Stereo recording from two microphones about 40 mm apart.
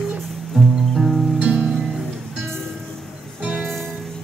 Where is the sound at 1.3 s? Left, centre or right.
Right.